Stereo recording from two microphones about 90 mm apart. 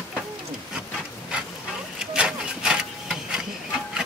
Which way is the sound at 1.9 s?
10° right (ahead or behind).